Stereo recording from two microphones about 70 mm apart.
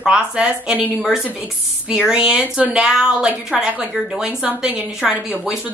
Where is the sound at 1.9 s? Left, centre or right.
Centre.